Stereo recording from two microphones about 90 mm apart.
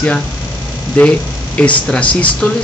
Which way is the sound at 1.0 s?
15° left (ahead or behind).